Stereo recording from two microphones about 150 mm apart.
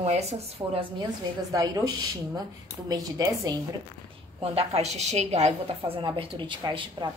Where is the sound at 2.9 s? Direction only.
25° right (ahead or behind).